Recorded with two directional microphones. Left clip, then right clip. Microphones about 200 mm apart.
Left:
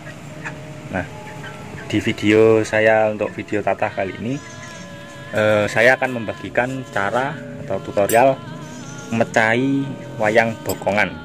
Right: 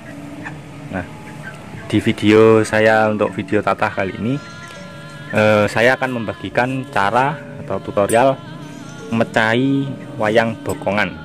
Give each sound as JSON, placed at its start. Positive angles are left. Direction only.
{"t": 1.9, "sound": "speech", "side_deg": -30}